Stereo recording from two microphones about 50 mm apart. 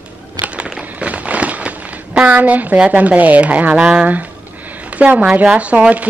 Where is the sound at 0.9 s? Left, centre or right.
Right.